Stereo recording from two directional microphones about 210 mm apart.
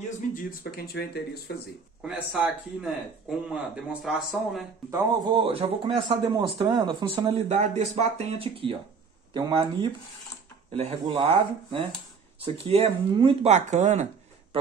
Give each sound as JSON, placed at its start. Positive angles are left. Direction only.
{"t": 0.3, "sound": "speech", "side_deg": 45}
{"t": 2.0, "sound": "speech", "side_deg": -5}
{"t": 4.9, "sound": "speech", "side_deg": -20}
{"t": 12.4, "sound": "speech", "side_deg": -25}